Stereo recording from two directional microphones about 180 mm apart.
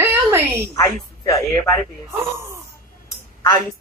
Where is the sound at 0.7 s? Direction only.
15° left (ahead or behind).